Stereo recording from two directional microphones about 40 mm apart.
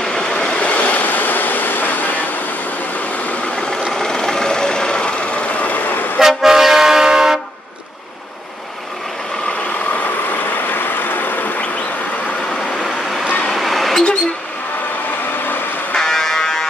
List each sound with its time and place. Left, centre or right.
0.0 s waves: centre
0.6 s vehicle: left
3.9 s vehicle: centre; by 5.8 s left
6.1 s vehicle: centre
10.7 s vehicle: left
13.5 s vehicle: centre
15.9 s buzzer: centre